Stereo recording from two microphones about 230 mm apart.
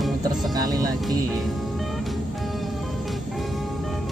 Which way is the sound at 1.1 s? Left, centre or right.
Centre.